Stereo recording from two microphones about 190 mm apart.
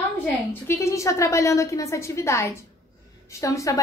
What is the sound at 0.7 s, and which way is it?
A woman's voice, 15° left (ahead or behind).